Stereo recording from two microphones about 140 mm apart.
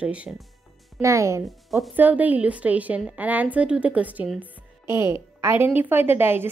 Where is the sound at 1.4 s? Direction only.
Centre (ahead or behind).